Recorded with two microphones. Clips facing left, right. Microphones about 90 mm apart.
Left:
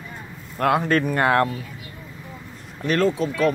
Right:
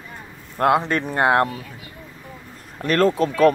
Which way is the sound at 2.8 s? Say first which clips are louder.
Right 3 dB; 50° right (ahead or behind).